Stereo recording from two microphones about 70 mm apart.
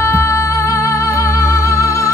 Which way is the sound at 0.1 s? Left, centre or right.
Left.